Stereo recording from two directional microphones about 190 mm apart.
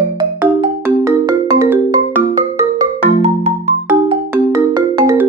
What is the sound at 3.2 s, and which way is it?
Music, 35° right (ahead or behind).